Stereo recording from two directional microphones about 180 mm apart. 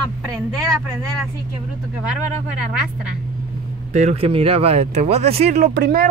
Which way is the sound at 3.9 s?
40° right (ahead or behind).